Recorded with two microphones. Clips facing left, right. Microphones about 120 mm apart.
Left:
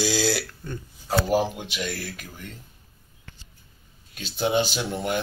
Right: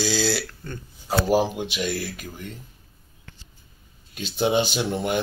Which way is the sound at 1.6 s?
15° right (ahead or behind).